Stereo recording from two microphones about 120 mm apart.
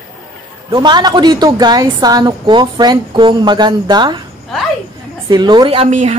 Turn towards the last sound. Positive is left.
turn(degrees=-75)  # may be behind; listen again after turning